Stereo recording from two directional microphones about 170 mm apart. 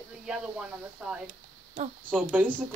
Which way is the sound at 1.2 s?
45° right (ahead or behind).